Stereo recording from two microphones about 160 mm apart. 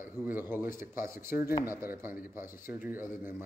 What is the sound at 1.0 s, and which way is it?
Speech, 65° left (ahead or behind).